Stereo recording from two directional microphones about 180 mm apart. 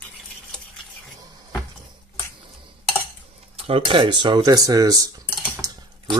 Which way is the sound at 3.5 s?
30° right (ahead or behind).